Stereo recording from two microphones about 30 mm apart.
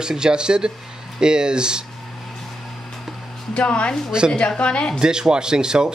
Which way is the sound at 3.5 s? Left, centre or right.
Left.